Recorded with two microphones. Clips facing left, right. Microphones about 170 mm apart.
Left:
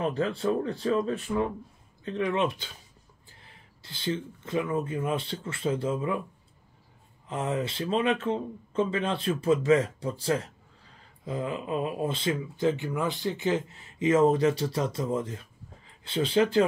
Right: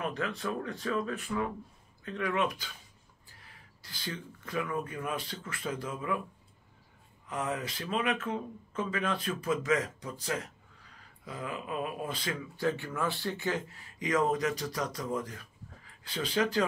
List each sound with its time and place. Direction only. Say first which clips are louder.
0.0 s speech: left 7 dB; 30° left (ahead or behind)
7.2 s speech: left 5 dB; 25° left (ahead or behind)